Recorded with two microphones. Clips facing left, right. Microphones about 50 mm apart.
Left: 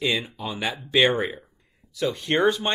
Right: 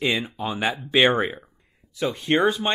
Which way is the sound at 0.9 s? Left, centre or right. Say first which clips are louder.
Right 1 dB; right.